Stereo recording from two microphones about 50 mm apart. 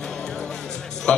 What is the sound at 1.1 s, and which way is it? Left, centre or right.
Music, centre.